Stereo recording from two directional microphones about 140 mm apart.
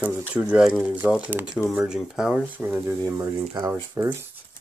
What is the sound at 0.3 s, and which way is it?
Speech, 5° right (ahead or behind).